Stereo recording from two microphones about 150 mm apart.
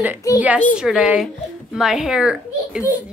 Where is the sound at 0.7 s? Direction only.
5° right (ahead or behind).